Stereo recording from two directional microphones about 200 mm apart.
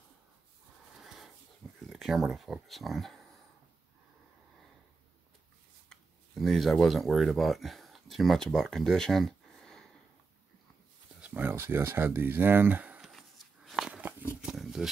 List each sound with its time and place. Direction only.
0.9 s dog: centre (ahead or behind)
1.8 s speech: centre (ahead or behind)
5.9 s speech: centre (ahead or behind)
11.1 s a sound: 5° right (ahead or behind)
14.4 s roaring cats: 5° right (ahead or behind)